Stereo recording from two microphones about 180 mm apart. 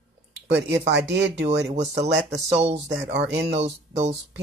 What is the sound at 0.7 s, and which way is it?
Speech, 75° right (ahead or behind).